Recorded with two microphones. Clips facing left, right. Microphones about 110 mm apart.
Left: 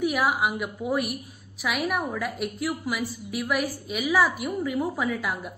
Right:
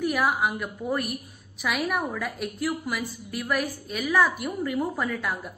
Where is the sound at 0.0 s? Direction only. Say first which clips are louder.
Even; centre (ahead or behind).